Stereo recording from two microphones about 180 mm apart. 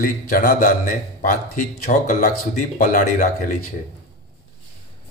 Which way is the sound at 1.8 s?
45° left (ahead or behind).